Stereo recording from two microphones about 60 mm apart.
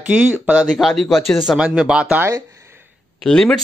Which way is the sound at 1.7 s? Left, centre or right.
Centre.